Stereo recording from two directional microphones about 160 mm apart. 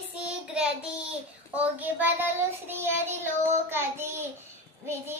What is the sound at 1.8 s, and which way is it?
Child singing, 10° right (ahead or behind).